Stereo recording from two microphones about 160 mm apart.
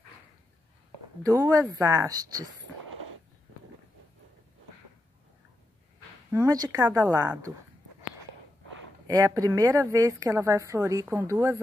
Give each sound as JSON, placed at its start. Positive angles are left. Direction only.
{"t": 1.5, "sound": "a woman's voice", "side_deg": -20}
{"t": 6.3, "sound": "a woman's voice", "side_deg": -20}
{"t": 9.0, "sound": "a woman's voice", "side_deg": -20}